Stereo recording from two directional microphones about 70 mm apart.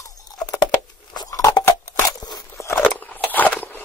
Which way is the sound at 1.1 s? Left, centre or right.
Left.